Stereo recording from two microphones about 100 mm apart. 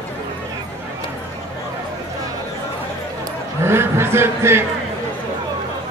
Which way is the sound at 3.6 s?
25° right (ahead or behind).